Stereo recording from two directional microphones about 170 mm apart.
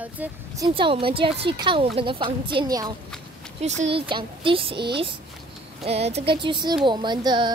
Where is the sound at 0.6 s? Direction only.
30° right (ahead or behind).